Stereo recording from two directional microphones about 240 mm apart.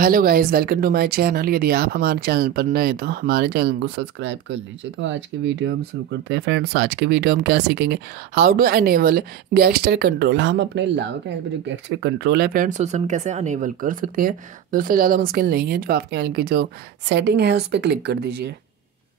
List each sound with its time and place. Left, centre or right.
0.0 s speech: right